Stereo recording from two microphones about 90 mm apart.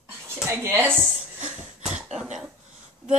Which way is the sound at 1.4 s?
10° right (ahead or behind).